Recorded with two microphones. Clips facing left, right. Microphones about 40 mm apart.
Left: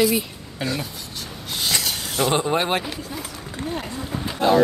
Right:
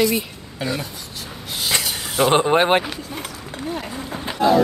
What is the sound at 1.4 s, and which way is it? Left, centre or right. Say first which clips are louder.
Rub: even; centre.